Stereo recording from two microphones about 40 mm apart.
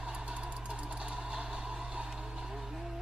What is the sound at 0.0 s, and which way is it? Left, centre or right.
Music, right.